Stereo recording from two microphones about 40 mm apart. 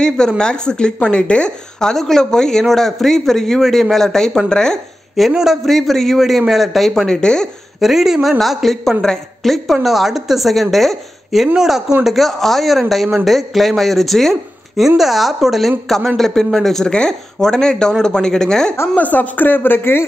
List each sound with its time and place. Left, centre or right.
0.0 s speech: centre
1.8 s speech: centre
5.3 s speech: centre
5.6 s speech: centre
6.9 s speech: centre
7.8 s speech: centre
11.4 s speech: centre
16.8 s speech: left
18.9 s speech: left